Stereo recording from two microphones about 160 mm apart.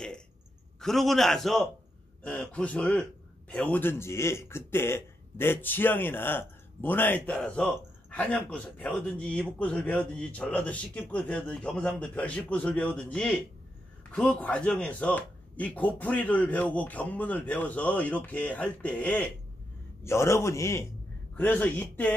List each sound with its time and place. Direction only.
0.7 s a man's voice: centre (ahead or behind)